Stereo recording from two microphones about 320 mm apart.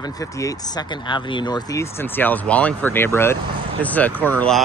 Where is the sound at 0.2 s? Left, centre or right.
Centre.